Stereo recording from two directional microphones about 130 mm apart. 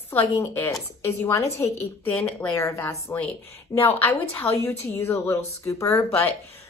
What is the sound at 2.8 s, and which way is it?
A woman's voice, 15° left (ahead or behind).